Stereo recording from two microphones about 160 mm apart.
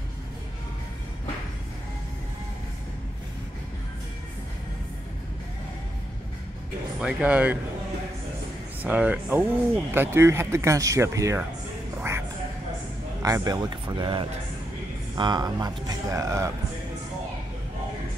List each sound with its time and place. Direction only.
7.0 s speech: 5° right (ahead or behind)
8.8 s speech: 10° right (ahead or behind)
13.2 s speech: 20° right (ahead or behind)